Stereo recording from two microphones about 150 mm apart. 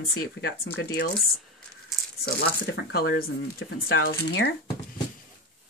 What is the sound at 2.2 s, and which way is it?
Speech, 90° left.